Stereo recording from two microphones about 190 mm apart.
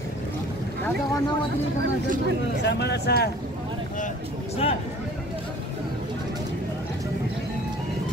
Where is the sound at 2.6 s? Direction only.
65° left (ahead or behind).